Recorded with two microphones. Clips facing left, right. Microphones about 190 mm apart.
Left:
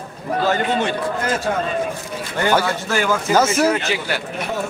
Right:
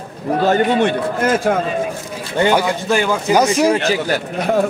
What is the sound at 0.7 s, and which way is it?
Speech, 60° right (ahead or behind).